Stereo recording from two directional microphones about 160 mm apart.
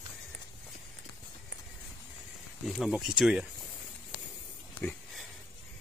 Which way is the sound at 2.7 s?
5° right (ahead or behind).